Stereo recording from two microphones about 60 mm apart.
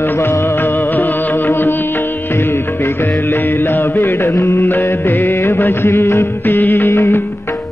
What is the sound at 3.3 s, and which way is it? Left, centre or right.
Music, left.